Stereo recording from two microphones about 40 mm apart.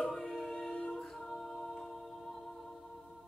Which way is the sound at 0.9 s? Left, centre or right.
Centre.